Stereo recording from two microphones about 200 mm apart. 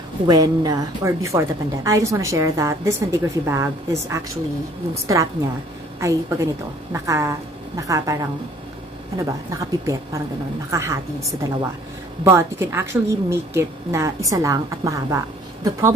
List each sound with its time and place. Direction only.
0.3 s a woman's voice: 20° right (ahead or behind)
12.3 s a woman's voice: 15° right (ahead or behind)